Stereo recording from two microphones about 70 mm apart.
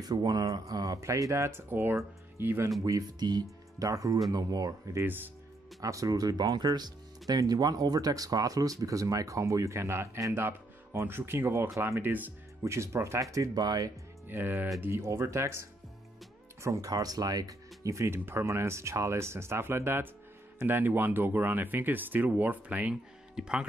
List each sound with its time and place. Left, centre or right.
0.0 s speech: right
2.8 s speech: right
3.2 s speech: right
3.8 s speech: right
4.3 s speech: right
5.0 s speech: right
5.8 s speech: right
12.6 s speech: right
14.2 s speech: right
16.6 s speech: right
23.3 s speech: centre